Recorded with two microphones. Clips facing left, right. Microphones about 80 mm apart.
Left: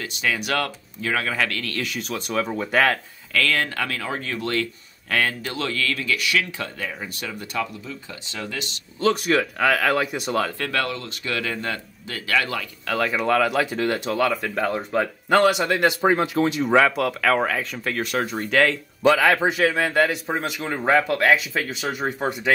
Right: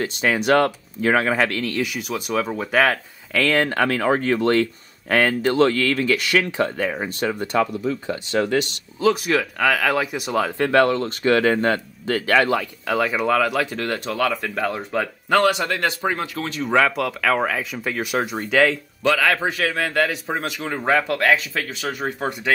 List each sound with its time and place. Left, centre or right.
0.0 s speech: right; by 2.0 s centre
2.0 s speech: centre
3.3 s speech: right
7.8 s speech: right
9.0 s speech: centre
10.6 s speech: right
12.8 s speech: centre
16.6 s speech: centre
19.0 s speech: centre